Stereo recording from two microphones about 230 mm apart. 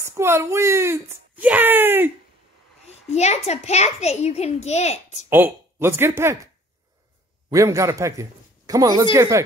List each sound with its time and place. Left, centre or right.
0.0 s speech: centre
3.1 s a child's voice: left
5.3 s a man's voice: centre